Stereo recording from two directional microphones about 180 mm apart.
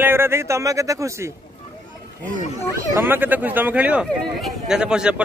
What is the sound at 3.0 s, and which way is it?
A man's voice, 10° right (ahead or behind).